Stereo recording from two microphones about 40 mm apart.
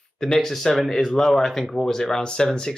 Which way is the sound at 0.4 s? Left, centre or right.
Centre.